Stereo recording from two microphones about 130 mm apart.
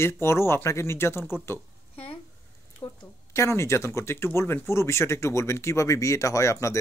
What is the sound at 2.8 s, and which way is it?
A woman's voice, 25° left (ahead or behind).